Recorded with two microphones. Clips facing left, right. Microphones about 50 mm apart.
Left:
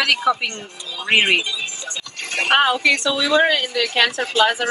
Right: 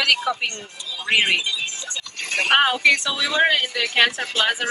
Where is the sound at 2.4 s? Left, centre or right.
Centre.